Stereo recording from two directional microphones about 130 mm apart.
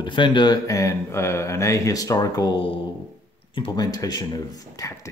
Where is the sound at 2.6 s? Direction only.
40° left (ahead or behind); by 5.1 s 25° left (ahead or behind).